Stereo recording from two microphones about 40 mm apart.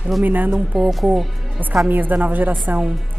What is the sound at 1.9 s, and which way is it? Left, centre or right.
Speech, right.